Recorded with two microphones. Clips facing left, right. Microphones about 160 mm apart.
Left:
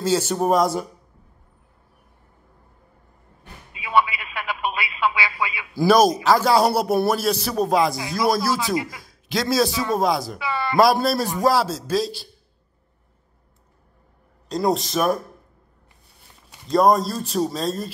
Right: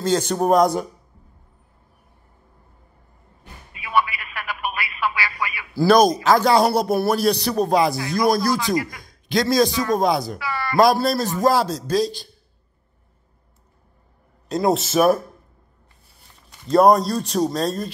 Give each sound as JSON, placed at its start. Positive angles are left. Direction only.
{"t": 0.0, "sound": "a man's voice", "side_deg": 5}
{"t": 3.7, "sound": "a sound", "side_deg": 20}
{"t": 5.9, "sound": "a man's voice", "side_deg": 5}
{"t": 10.4, "sound": "speech", "side_deg": 20}
{"t": 10.8, "sound": "a man's voice", "side_deg": 0}
{"t": 14.5, "sound": "a man's voice", "side_deg": 0}
{"t": 16.7, "sound": "a man's voice", "side_deg": 0}